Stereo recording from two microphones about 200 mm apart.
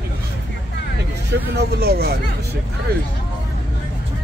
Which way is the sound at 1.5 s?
55° right (ahead or behind).